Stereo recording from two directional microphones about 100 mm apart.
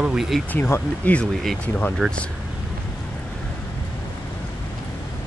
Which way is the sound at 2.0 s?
Centre (ahead or behind).